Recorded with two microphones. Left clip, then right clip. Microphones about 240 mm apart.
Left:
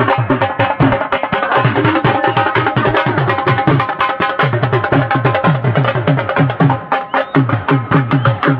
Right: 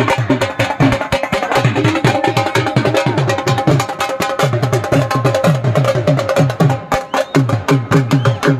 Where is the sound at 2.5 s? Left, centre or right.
Right.